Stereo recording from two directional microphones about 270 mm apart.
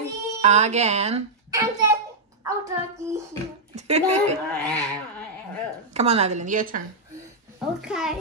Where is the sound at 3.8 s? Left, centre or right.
Right.